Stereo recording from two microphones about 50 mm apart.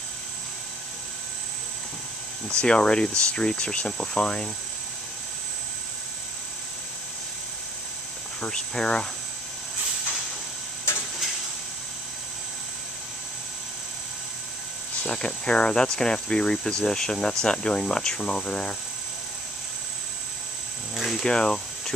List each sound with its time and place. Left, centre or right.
2.5 s speech: left
8.4 s speech: centre
15.0 s speech: centre
20.9 s speech: centre